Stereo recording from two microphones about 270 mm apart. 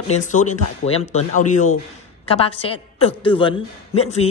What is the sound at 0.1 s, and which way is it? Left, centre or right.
A woman's voice, left.